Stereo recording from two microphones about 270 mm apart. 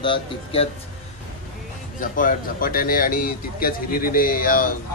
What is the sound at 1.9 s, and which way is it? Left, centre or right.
Speech, left.